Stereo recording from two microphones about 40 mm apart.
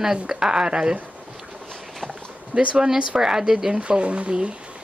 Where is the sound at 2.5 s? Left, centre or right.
Right.